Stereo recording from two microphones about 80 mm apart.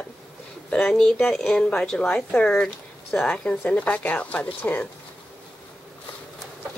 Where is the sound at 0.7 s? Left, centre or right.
Centre.